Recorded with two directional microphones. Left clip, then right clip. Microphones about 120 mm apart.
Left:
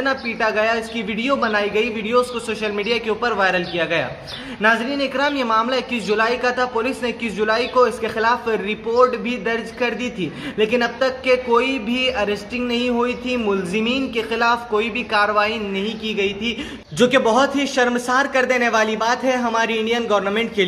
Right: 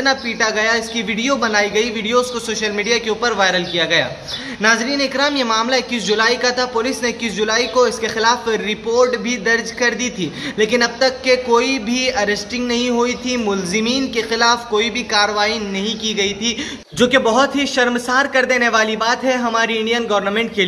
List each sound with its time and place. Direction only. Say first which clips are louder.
0.0 s speech: right 3 dB; 30° right (ahead or behind)